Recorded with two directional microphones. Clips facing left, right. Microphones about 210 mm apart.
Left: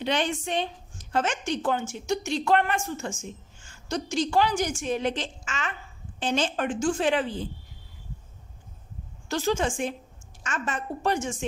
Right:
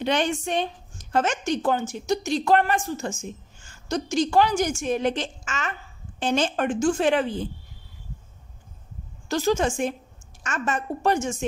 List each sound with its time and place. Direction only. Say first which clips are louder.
0.0 s a woman's voice: right 3 dB; 50° right (ahead or behind)
9.3 s a woman's voice: right 3 dB; 40° right (ahead or behind)